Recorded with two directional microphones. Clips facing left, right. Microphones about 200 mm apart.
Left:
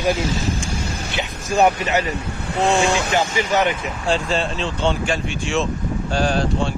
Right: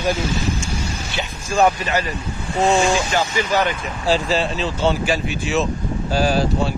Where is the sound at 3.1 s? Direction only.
20° left (ahead or behind).